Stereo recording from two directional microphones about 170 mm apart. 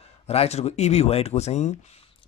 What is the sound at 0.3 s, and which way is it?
A man's voice, 40° left (ahead or behind).